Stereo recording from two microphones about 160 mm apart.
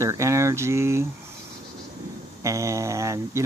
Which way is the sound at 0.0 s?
20° right (ahead or behind).